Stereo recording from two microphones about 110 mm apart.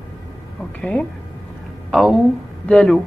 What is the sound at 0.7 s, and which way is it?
Speech, 10° left (ahead or behind).